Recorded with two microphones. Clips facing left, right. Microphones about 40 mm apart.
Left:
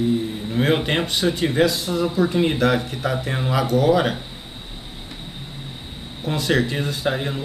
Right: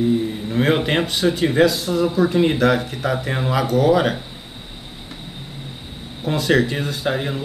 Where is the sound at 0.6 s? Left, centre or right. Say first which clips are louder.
Right 2 dB; centre.